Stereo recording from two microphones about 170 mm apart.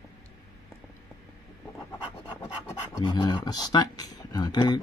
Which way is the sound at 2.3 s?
15° left (ahead or behind).